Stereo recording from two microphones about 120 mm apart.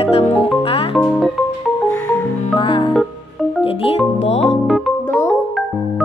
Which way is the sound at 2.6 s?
45° left (ahead or behind).